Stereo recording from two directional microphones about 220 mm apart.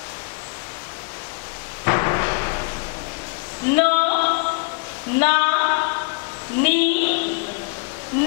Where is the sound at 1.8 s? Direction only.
20° left (ahead or behind).